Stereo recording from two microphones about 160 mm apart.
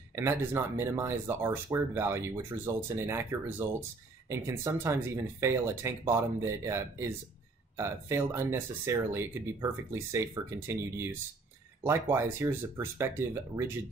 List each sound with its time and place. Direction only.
0.1 s speech: 15° right (ahead or behind)